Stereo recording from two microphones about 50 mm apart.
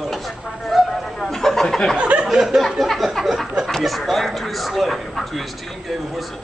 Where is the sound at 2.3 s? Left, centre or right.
Centre.